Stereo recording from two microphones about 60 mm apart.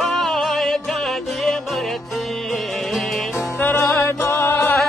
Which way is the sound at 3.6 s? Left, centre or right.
Left.